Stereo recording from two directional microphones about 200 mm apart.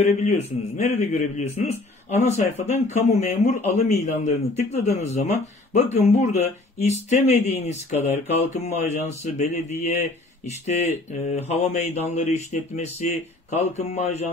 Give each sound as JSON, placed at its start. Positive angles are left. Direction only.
{"t": 0.0, "sound": "speech", "side_deg": 30}